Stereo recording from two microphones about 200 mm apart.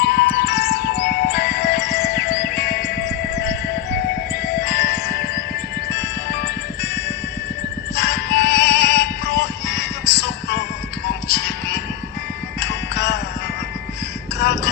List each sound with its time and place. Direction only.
0.0 s music: 55° left (ahead or behind)
4.6 s music: 55° left (ahead or behind)
7.9 s synthetic singing: 55° left (ahead or behind)
11.2 s music: 55° left (ahead or behind)
14.4 s music: 55° left (ahead or behind)